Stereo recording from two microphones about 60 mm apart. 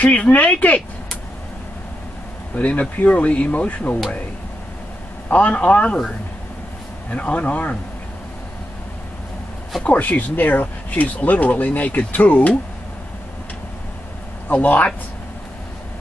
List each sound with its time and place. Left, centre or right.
0.0 s speech: left
2.5 s speech: left
5.3 s speech: left
9.8 s speech: left
14.5 s speech: left